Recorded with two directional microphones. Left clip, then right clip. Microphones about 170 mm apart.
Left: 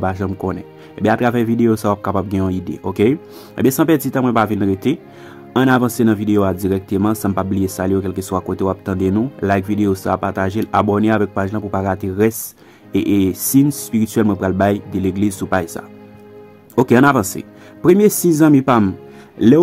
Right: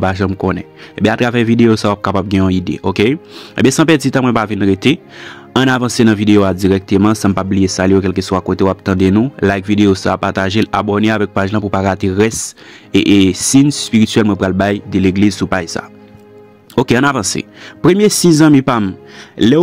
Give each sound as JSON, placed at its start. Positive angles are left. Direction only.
{"t": 0.0, "sound": "speech", "side_deg": -25}
{"t": 17.2, "sound": "speech", "side_deg": -25}
{"t": 19.3, "sound": "speech", "side_deg": -30}